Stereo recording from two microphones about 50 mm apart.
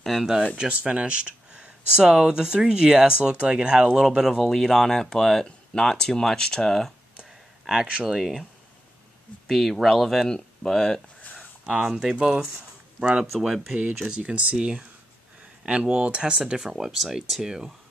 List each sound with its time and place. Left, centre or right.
0.0 s speech: centre
0.7 s speech: right
4.5 s speech: centre
7.2 s a sound: centre
8.0 s speech: centre
9.5 s speech: centre
11.7 s speech: centre
14.0 s speech: right